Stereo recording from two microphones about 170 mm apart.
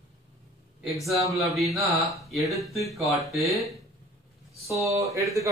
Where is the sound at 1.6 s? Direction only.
Centre (ahead or behind).